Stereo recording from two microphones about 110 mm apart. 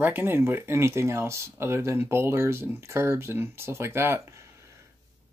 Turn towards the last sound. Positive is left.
turn(degrees=-20)  # may be behind; listen again after turning